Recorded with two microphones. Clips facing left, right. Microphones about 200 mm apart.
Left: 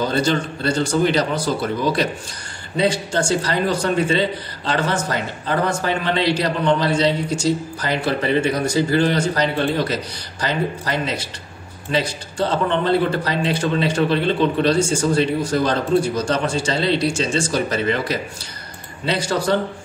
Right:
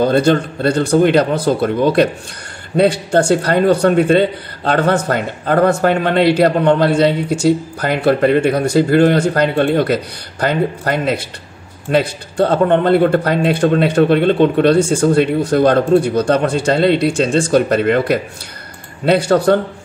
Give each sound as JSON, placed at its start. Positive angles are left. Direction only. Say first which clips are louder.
{"t": 0.0, "sound": "a man's voice", "louder": "right 7 dB", "side_deg": -55}